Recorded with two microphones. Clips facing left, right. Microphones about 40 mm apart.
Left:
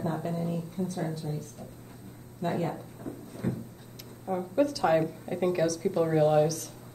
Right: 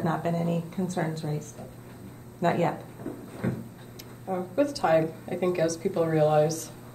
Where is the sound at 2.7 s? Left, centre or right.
Right.